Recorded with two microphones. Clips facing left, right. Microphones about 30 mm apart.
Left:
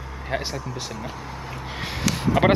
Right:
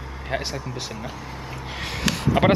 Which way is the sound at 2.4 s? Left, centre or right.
Centre.